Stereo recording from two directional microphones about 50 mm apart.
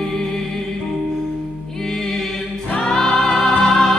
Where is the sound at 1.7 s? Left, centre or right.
Centre.